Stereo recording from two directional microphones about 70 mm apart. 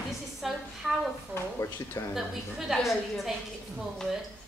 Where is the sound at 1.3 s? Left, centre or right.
Left.